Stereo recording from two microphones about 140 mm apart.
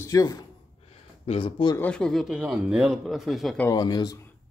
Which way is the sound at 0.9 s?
40° left (ahead or behind).